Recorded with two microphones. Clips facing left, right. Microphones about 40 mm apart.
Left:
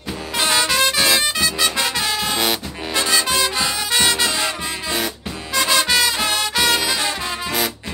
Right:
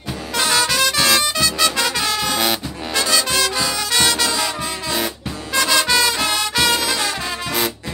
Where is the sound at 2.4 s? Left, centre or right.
Centre.